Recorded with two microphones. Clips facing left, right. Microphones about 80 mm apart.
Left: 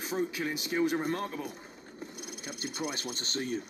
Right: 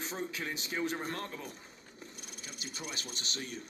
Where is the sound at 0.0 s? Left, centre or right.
Centre.